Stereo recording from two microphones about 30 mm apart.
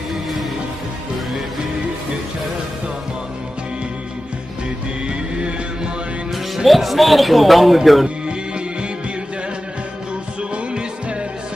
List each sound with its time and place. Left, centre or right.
5.0 s music: right
6.3 s a man's voice: centre
8.3 s music: right
10.5 s music: right